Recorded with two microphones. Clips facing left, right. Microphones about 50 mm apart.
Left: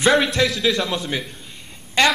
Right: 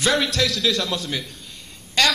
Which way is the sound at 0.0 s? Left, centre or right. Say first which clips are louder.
Left 4 dB; left.